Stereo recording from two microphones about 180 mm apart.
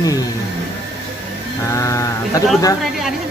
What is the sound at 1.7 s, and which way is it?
Sheep, 15° left (ahead or behind).